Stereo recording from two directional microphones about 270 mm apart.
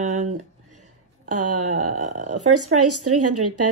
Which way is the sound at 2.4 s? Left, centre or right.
Right.